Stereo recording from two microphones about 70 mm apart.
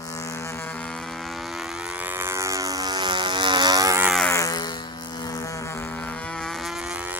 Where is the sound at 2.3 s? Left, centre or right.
Right.